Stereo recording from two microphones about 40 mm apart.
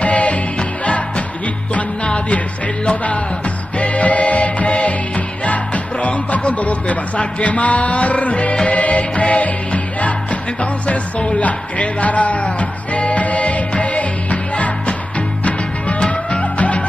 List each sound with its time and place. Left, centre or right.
0.0 s music: left
5.4 s speech: left
8.7 s music: left